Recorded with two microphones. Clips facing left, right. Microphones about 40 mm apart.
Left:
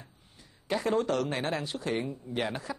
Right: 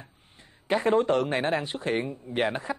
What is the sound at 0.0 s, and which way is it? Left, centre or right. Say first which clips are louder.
A man's voice: right 3 dB; right.